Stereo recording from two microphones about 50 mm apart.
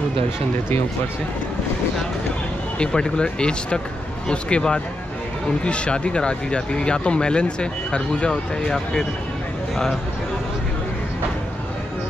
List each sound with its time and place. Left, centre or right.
2.8 s speech: centre